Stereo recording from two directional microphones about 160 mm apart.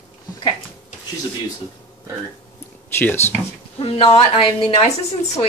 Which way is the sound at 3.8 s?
35° left (ahead or behind).